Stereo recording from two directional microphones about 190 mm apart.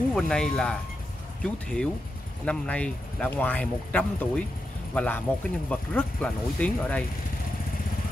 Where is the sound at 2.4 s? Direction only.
5° left (ahead or behind).